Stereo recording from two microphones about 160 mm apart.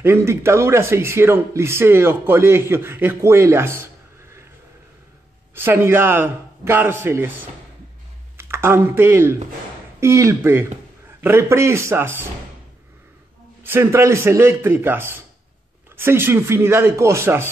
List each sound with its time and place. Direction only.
0.0 s speech: 15° right (ahead or behind)
5.5 s speech: 15° right (ahead or behind)
13.7 s speech: 15° right (ahead or behind)